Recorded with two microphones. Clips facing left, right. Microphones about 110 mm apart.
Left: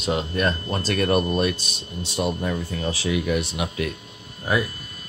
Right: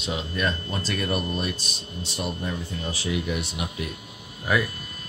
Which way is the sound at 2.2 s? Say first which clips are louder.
Left 6 dB; 90° left.